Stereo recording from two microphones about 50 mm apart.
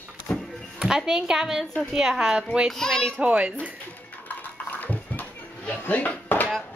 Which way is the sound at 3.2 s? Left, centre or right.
Right.